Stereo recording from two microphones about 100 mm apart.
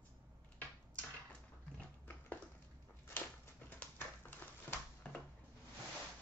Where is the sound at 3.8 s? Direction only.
20° left (ahead or behind).